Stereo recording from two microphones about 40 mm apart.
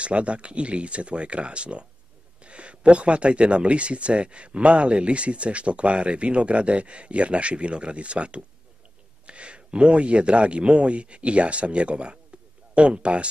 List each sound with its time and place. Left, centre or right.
0.0 s speech: right